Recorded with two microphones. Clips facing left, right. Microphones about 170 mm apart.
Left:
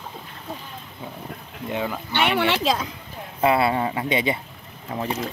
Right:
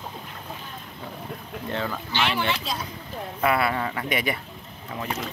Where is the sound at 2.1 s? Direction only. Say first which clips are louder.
Left 5 dB; 60° left (ahead or behind); by 2.8 s 80° left.